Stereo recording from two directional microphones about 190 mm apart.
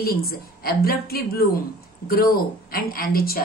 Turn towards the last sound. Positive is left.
turn(degrees=50)  # may be behind; listen again after turning